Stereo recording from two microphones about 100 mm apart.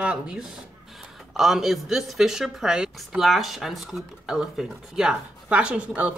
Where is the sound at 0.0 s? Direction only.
10° right (ahead or behind).